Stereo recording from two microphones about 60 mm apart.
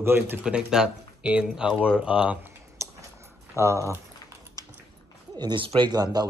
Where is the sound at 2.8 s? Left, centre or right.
Right.